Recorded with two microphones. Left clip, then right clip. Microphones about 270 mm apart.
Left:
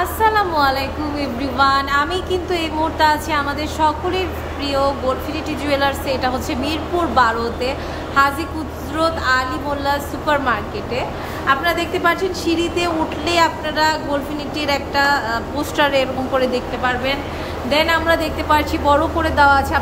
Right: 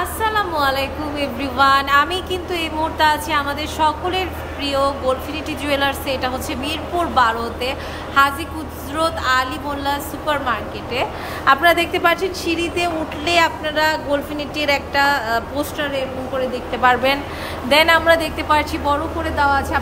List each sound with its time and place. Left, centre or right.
0.0 s a woman's voice: centre
16.8 s a woman's voice: centre